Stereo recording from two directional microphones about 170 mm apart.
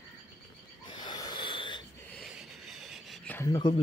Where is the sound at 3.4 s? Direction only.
25° left (ahead or behind).